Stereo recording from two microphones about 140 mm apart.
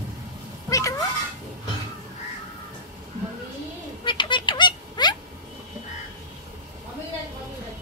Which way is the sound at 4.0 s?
35° left (ahead or behind).